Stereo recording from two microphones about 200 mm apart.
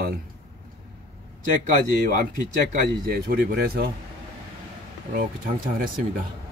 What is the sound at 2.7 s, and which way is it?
Speech, 45° right (ahead or behind).